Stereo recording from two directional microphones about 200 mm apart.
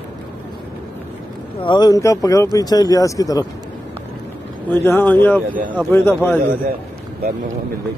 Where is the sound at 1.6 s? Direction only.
20° left (ahead or behind).